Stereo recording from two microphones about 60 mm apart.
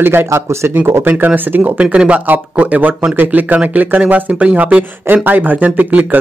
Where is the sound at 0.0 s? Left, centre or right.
Right.